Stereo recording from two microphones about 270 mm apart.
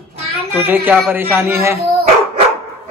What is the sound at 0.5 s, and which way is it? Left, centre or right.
A man's voice, centre.